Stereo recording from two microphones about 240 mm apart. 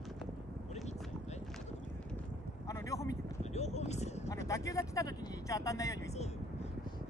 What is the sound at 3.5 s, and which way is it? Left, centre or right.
Vehicle, left.